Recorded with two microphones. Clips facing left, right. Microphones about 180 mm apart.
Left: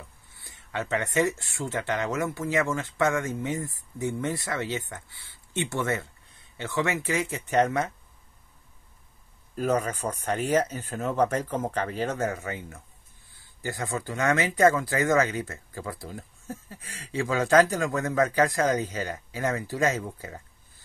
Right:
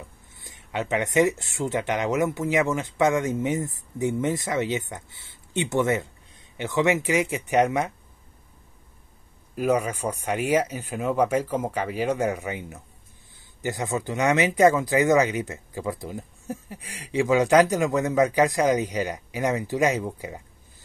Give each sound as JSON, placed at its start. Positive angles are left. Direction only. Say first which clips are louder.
{"t": 0.3, "sound": "speech", "louder": "right 3 dB", "side_deg": -20}
{"t": 9.6, "sound": "speech", "louder": "right 3 dB", "side_deg": -10}